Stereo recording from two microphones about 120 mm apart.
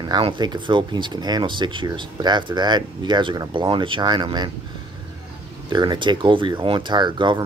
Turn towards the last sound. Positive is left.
turn(degrees=-40)  # may be behind; listen again after turning